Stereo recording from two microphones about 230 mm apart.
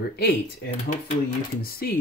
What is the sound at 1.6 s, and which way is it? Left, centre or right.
Speech, left.